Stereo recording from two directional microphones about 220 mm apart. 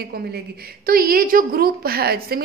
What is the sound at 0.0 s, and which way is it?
A woman's voice, 45° right (ahead or behind).